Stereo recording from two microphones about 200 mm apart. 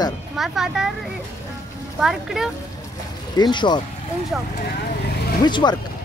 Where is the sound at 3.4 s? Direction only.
20° left (ahead or behind).